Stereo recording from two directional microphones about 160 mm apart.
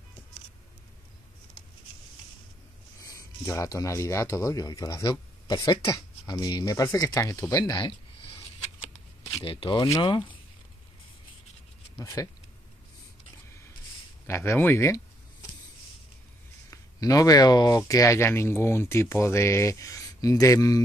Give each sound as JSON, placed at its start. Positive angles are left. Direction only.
{"t": 3.0, "sound": "speech", "side_deg": 20}
{"t": 9.3, "sound": "speech", "side_deg": 35}
{"t": 12.0, "sound": "speech", "side_deg": 20}
{"t": 14.2, "sound": "speech", "side_deg": 15}
{"t": 16.7, "sound": "speech", "side_deg": 20}